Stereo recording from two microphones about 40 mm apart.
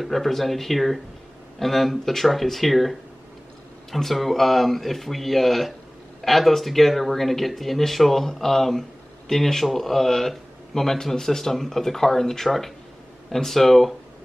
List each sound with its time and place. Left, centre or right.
0.0 s a man's voice: centre